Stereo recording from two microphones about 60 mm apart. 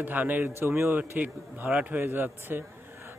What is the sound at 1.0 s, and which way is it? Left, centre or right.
A man's voice, right.